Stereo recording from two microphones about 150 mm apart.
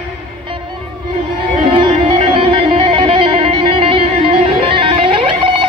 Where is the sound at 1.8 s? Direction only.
40° right (ahead or behind).